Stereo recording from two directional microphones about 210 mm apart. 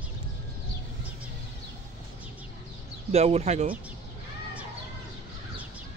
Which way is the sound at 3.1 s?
30° right (ahead or behind).